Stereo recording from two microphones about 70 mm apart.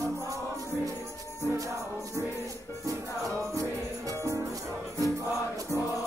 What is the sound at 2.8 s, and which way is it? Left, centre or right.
Music, right.